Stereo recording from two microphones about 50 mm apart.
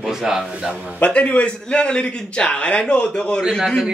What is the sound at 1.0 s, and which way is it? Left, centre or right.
A man's voice, left.